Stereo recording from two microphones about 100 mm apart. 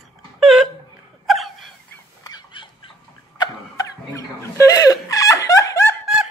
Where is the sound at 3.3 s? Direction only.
35° left (ahead or behind).